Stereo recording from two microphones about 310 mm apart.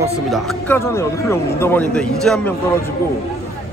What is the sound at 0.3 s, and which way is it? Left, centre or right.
A man's voice, centre.